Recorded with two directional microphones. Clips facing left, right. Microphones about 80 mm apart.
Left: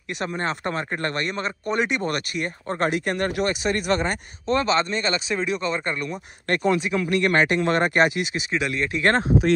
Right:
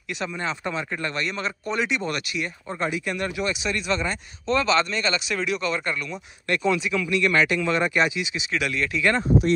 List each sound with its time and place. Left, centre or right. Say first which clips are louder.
0.1 s speech: left 2 dB; left
8.5 s speech: right 1 dB; left
8.9 s speech: left 3 dB; left